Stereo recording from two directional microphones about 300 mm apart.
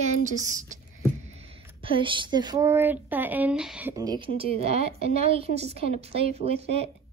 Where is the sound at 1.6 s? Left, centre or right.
Centre.